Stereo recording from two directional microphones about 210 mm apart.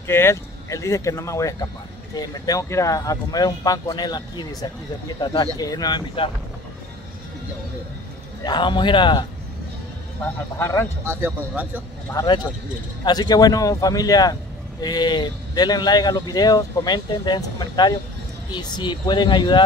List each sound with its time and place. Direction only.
0.0 s speech: 10° left (ahead or behind)
8.5 s speech: 20° left (ahead or behind)
10.6 s speech: 15° left (ahead or behind)
11.1 s speech: 10° right (ahead or behind)
12.1 s speech: 15° left (ahead or behind)